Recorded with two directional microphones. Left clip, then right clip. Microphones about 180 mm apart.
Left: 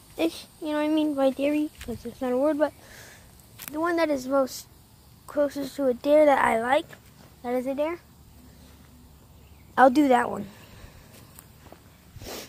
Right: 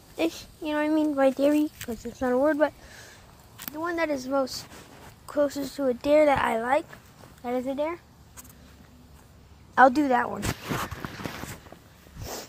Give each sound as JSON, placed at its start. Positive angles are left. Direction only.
{"t": 0.2, "sound": "a woman's voice", "side_deg": 0}
{"t": 1.4, "sound": "speech", "side_deg": -15}
{"t": 2.1, "sound": "a woman's voice", "side_deg": -5}
{"t": 2.8, "sound": "a sound", "side_deg": 10}
{"t": 3.7, "sound": "speech", "side_deg": 30}
{"t": 4.1, "sound": "speech", "side_deg": 15}
{"t": 5.3, "sound": "a woman's voice", "side_deg": -5}
{"t": 5.7, "sound": "a woman's voice", "side_deg": 5}
{"t": 9.8, "sound": "a woman's voice", "side_deg": 15}
{"t": 12.2, "sound": "a sound", "side_deg": 0}